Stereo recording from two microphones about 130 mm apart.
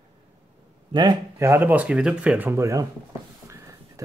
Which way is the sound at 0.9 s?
35° right (ahead or behind).